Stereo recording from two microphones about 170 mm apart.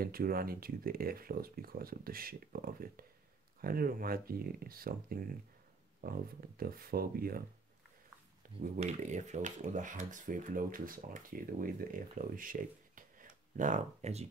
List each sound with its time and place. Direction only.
0.0 s speech: 60° right (ahead or behind)
8.7 s speech: 45° right (ahead or behind)